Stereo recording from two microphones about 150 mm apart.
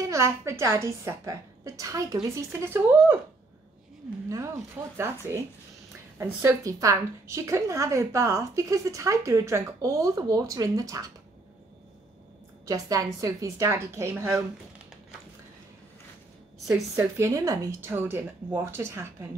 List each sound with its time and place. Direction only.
0.0 s a woman's voice: 20° right (ahead or behind)
4.9 s a woman's voice: 15° right (ahead or behind)
12.6 s a woman's voice: 25° right (ahead or behind)
16.9 s speech: 20° right (ahead or behind)